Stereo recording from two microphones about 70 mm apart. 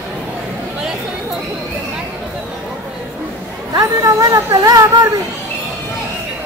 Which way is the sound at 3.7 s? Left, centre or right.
Right.